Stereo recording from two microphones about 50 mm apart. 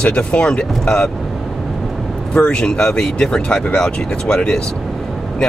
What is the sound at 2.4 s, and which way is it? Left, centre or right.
Speech, centre.